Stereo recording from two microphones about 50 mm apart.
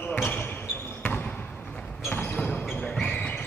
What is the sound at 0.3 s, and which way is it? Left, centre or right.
Basketball bounce, left.